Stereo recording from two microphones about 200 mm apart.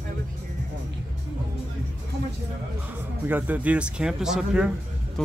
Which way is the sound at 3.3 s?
5° right (ahead or behind).